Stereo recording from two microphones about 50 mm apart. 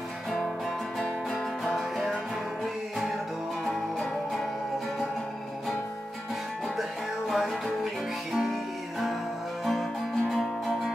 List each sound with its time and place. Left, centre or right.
3.6 s music: centre
6.8 s music: centre
9.7 s music: centre